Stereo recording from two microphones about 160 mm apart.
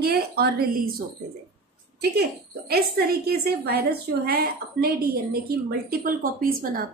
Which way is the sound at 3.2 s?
80° right.